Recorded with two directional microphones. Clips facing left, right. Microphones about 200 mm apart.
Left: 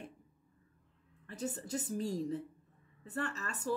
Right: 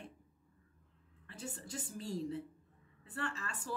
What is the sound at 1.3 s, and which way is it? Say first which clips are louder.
A woman's voice: left 7 dB; 40° left (ahead or behind).